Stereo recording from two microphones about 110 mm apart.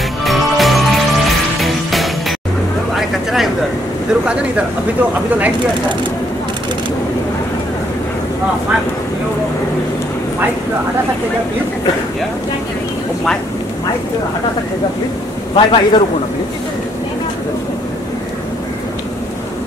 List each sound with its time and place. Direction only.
0.2 s music: centre (ahead or behind)
3.0 s a sound: centre (ahead or behind)
15.5 s a man's voice: 45° left (ahead or behind)